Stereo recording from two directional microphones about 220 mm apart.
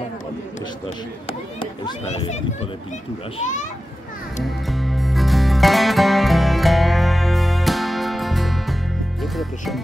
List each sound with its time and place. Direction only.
1.6 s a child's voice: 25° left (ahead or behind)
4.5 s music: centre (ahead or behind)
9.2 s speech: centre (ahead or behind)